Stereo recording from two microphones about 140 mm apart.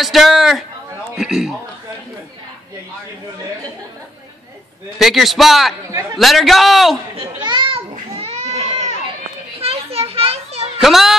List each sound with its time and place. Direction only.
0.0 s a man's voice: centre (ahead or behind)
4.9 s a man's voice: centre (ahead or behind)
7.2 s children playing: 35° right (ahead or behind)
8.2 s goat: 55° right (ahead or behind)
9.6 s children playing: 45° right (ahead or behind)
10.8 s a man's voice: centre (ahead or behind)